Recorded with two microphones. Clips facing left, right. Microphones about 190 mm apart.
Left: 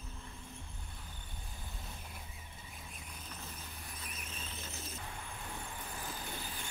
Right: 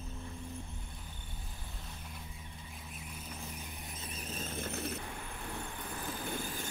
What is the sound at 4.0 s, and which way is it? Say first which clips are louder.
Vehicle: right 8 dB; 30° right (ahead or behind).